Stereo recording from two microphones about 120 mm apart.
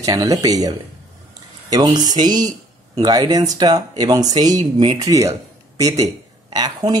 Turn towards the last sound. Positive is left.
turn(degrees=-35)  # may be behind; listen again after turning